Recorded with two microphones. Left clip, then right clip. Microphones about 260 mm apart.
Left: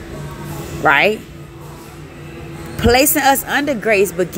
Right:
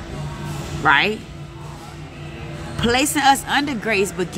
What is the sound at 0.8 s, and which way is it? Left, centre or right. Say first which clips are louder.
Speech: left 3 dB; centre.